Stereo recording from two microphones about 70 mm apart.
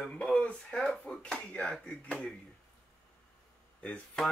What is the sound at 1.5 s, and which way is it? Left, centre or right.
Speech, centre.